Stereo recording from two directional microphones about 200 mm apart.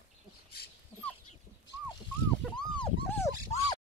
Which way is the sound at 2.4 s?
5° left (ahead or behind).